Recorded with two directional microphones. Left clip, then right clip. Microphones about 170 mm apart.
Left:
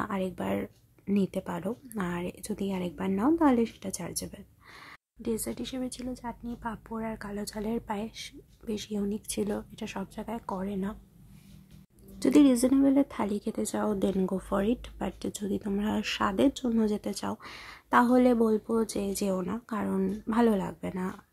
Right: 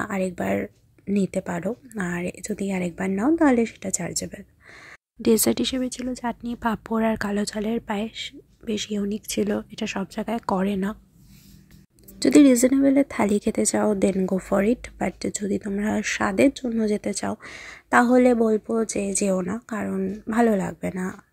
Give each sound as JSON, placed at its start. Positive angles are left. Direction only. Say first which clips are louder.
{"t": 0.0, "sound": "a woman's voice", "louder": "right 6 dB", "side_deg": -15}
{"t": 5.2, "sound": "a woman's voice", "louder": "right 13 dB", "side_deg": -45}
{"t": 6.2, "sound": "a woman's voice", "louder": "right 13 dB", "side_deg": -35}
{"t": 12.2, "sound": "speech", "louder": "right 7 dB", "side_deg": -20}
{"t": 13.2, "sound": "a woman's voice", "louder": "right 10 dB", "side_deg": -30}
{"t": 19.8, "sound": "a woman's voice", "louder": "right 1 dB", "side_deg": -10}